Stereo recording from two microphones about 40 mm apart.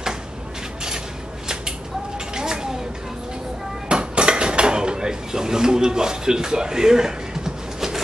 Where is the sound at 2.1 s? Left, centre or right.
Centre.